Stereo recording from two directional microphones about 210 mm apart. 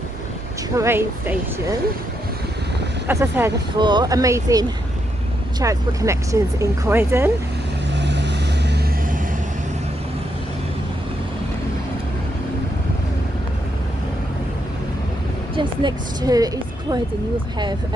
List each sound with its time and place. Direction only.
0.7 s speech: 10° right (ahead or behind)
3.1 s speech: 10° right (ahead or behind)
7.9 s vehicle: 55° right (ahead or behind)
15.5 s speech: 20° right (ahead or behind)